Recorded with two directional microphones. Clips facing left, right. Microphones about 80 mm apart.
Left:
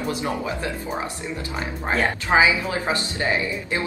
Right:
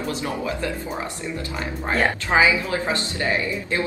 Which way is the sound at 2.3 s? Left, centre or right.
Left.